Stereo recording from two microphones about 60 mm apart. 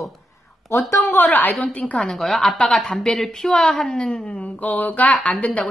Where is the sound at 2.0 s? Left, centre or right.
Centre.